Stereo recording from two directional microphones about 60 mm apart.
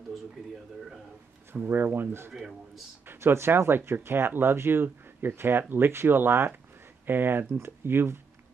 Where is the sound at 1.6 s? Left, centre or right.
Right.